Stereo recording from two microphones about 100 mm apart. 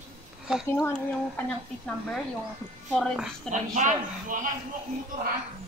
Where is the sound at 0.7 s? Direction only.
25° left (ahead or behind).